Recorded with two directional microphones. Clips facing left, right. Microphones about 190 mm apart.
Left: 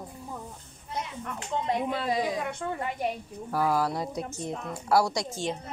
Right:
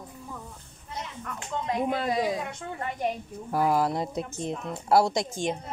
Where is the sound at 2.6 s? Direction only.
50° left (ahead or behind).